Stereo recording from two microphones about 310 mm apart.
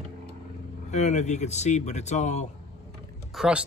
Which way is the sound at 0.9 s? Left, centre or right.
Left.